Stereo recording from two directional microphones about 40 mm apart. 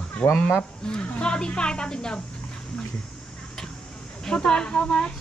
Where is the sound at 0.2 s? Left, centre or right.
Left.